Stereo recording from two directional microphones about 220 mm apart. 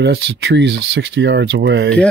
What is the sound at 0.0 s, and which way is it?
Speech, 50° right (ahead or behind).